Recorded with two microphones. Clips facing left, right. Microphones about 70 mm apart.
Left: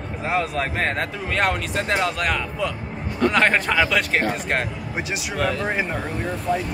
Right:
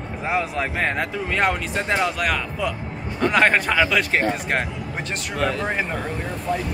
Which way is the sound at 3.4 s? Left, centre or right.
Centre.